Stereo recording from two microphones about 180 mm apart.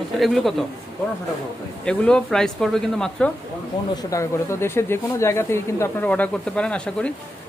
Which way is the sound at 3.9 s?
20° left (ahead or behind).